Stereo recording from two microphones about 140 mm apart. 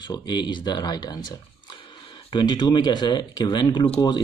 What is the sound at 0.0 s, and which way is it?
Speech, 30° left (ahead or behind).